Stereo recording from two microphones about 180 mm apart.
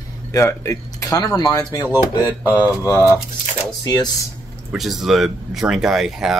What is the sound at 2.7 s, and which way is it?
Speech, 15° left (ahead or behind).